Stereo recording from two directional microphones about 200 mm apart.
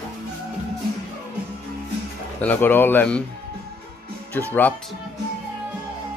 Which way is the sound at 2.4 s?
10° left (ahead or behind).